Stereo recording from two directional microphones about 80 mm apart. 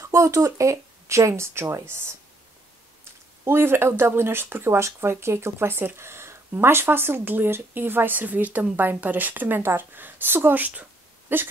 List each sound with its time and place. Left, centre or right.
0.0 s speech: right
3.4 s speech: right